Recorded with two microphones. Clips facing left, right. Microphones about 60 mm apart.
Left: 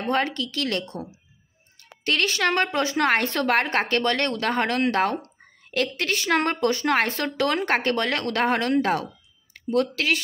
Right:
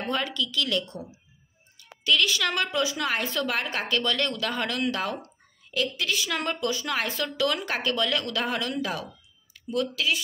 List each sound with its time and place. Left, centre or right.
0.0 s a woman's voice: left